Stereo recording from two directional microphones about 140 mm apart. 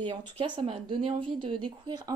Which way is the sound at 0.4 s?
45° right (ahead or behind).